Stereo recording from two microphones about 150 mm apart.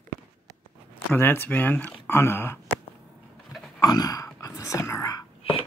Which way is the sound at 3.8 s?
25° left (ahead or behind).